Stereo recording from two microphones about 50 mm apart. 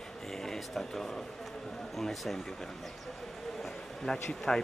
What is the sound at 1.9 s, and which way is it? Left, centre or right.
Speech, centre.